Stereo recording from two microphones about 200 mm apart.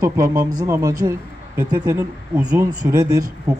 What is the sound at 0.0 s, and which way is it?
Speech, 15° right (ahead or behind).